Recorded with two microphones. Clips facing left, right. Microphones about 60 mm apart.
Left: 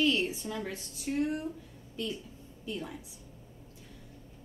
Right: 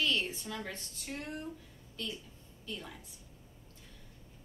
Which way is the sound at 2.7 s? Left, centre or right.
Centre.